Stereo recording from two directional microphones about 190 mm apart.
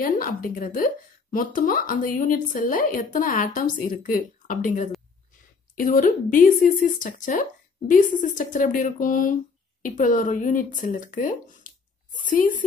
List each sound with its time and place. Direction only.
0.0 s speech: 45° left (ahead or behind)